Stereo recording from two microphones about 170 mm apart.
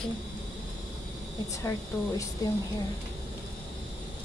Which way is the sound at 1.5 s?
20° left (ahead or behind).